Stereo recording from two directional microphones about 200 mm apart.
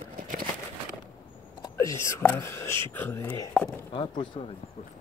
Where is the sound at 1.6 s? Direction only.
15° left (ahead or behind).